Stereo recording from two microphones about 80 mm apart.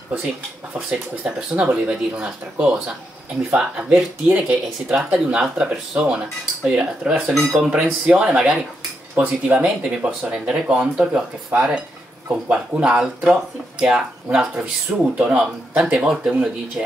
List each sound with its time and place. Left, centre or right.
0.7 s speech: centre
7.3 s speech: centre
7.7 s speech: centre